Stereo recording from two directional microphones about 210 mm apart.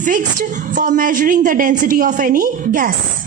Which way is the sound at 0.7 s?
40° right (ahead or behind).